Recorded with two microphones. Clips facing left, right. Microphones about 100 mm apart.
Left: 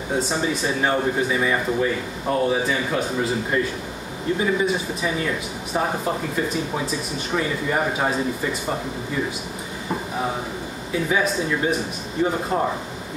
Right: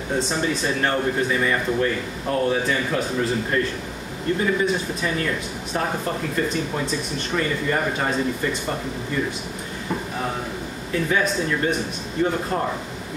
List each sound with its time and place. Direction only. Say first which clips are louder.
0.1 s speech: even; 5° left (ahead or behind)
10.9 s speech: even; 10° left (ahead or behind)